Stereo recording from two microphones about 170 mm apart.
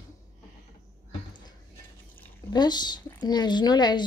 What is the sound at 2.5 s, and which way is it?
A woman's voice, 25° left (ahead or behind).